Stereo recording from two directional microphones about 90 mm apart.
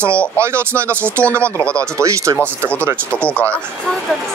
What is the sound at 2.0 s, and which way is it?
Speech, 35° right (ahead or behind).